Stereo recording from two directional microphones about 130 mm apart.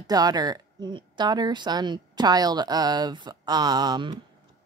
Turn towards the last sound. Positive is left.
turn(degrees=-35)  # may be behind; listen again after turning